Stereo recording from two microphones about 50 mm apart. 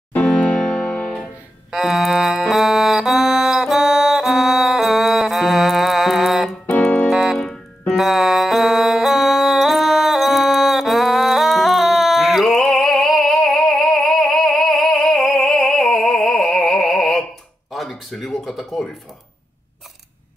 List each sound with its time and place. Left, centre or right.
0.2 s music: centre
1.7 s music: centre
7.1 s keyboard: centre
7.3 s music: centre
7.9 s music: centre
16.2 s music: centre
16.4 s music: centre
17.6 s a sound: centre